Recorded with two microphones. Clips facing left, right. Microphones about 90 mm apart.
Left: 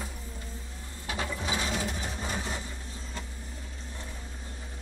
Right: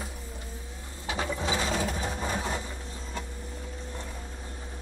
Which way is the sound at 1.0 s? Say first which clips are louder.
Right 3 dB; 20° right (ahead or behind).